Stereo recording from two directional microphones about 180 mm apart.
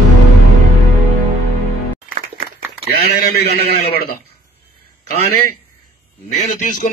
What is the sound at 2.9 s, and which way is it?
A man's voice, 60° left (ahead or behind).